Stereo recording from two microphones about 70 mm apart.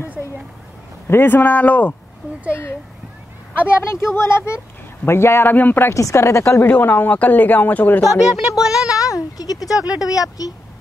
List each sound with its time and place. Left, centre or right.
1.0 s speech: left
3.5 s speech: left
5.9 s speech: left
6.6 s speech: left
8.0 s speech: left
8.5 s speech: centre
9.0 s speech: left